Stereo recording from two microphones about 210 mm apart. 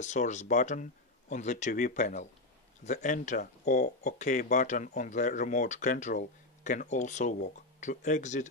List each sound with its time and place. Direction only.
0.0 s speech: 35° left (ahead or behind)